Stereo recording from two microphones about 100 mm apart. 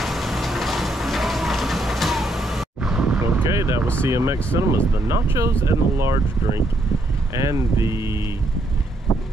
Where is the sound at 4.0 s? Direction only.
25° right (ahead or behind).